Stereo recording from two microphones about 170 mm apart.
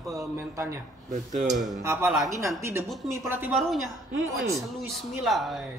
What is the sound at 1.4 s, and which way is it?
Speech, centre (ahead or behind).